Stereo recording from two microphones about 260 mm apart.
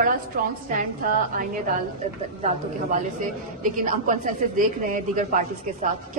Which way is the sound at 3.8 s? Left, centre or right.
Right.